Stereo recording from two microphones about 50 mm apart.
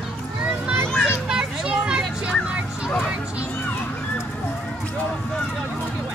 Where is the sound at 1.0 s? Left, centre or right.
Centre.